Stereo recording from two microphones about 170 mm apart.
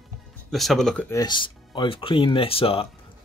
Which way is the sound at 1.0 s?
25° left (ahead or behind).